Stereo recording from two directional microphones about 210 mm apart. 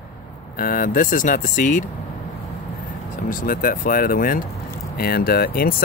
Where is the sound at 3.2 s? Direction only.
40° left (ahead or behind).